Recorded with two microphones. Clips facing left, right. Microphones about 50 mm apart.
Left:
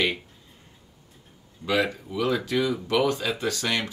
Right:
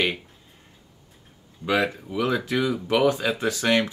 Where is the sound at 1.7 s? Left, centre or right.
Centre.